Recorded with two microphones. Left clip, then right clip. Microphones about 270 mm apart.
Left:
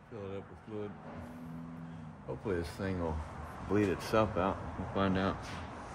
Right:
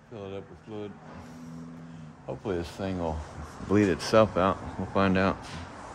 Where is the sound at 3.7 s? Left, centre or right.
Right.